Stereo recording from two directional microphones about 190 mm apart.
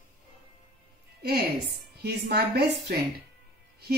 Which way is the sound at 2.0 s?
55° right (ahead or behind).